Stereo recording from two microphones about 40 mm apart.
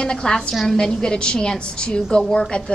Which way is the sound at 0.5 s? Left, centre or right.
Centre.